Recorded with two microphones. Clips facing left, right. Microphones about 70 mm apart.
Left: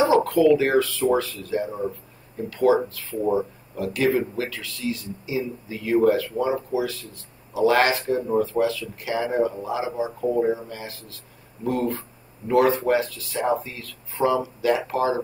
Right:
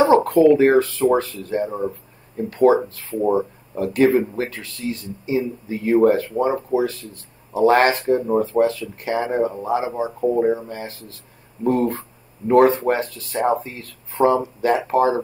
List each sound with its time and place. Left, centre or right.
0.0 s speech: right
1.8 s a sound: right
2.5 s speech: right
3.2 s speech: right